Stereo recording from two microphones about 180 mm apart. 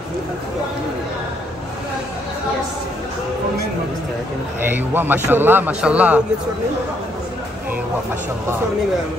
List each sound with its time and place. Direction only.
4.6 s a man's voice: 10° right (ahead or behind)